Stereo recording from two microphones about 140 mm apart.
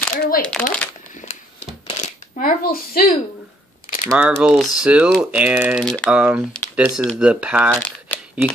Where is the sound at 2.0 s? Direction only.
70° left (ahead or behind); by 3.1 s 90° left.